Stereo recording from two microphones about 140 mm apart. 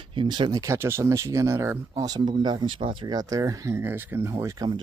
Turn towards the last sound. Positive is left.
turn(degrees=-25)  # may be behind; listen again after turning